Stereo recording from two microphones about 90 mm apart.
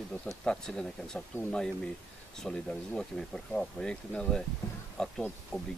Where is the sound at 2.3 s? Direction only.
5° left (ahead or behind).